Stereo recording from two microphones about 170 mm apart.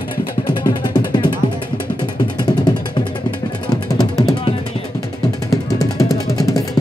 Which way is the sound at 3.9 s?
20° left (ahead or behind).